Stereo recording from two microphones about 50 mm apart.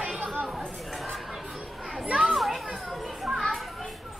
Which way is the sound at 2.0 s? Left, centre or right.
Right.